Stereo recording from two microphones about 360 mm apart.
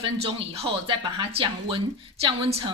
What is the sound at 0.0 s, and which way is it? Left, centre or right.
Speech, centre.